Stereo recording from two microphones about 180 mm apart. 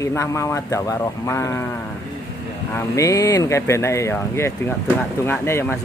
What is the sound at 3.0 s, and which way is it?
Speech, 15° left (ahead or behind).